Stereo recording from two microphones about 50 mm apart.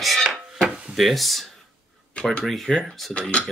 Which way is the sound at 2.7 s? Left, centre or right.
Centre.